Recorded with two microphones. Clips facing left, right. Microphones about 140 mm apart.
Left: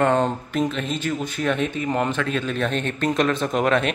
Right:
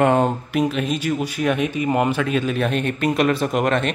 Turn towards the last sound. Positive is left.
turn(degrees=0)  # may be behind; listen again after turning